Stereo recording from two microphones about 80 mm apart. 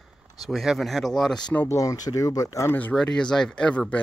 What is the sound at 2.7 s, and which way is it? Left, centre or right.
Speech, left.